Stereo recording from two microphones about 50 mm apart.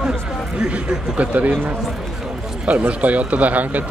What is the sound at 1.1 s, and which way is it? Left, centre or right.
Speech, right.